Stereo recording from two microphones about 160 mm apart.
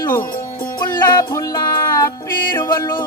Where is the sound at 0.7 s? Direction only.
25° left (ahead or behind).